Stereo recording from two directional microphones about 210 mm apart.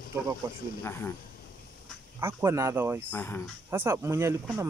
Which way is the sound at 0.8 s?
10° left (ahead or behind).